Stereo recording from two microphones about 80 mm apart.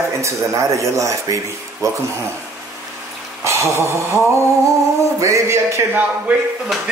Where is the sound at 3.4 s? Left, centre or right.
Right.